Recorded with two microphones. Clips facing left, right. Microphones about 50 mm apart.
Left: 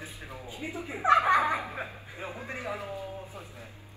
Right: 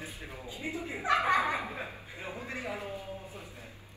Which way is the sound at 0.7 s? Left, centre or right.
Left.